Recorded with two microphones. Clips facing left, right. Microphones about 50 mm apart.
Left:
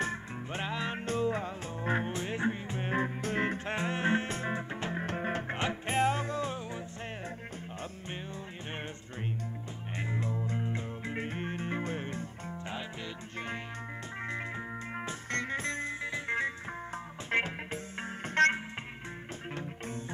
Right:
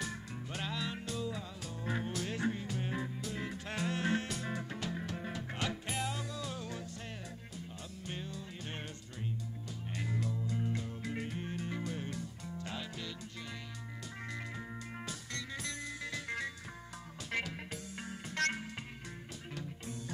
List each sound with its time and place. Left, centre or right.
0.0 s music: left
3.6 s music: left
8.1 s music: left
9.9 s music: left
15.3 s music: left